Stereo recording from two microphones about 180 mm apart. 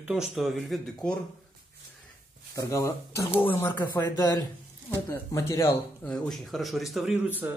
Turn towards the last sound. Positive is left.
turn(degrees=-10)  # may be behind; listen again after turning